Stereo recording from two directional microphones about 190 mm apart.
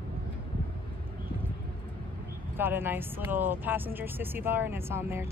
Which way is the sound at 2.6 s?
10° right (ahead or behind).